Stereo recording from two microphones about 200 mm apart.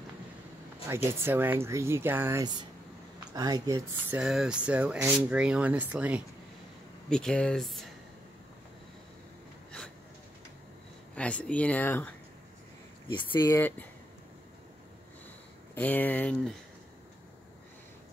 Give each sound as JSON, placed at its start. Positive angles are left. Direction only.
{"t": 0.8, "sound": "speech", "side_deg": -10}
{"t": 4.2, "sound": "speech", "side_deg": -5}
{"t": 7.1, "sound": "speech", "side_deg": 5}
{"t": 11.1, "sound": "speech", "side_deg": 5}
{"t": 13.1, "sound": "speech", "side_deg": 20}
{"t": 15.7, "sound": "speech", "side_deg": 10}